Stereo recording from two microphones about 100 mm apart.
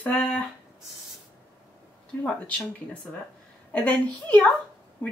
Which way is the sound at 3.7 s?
15° left (ahead or behind).